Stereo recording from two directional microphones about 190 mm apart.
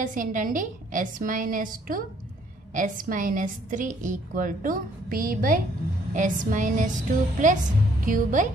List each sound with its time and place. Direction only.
0.0 s a woman's voice: 45° right (ahead or behind)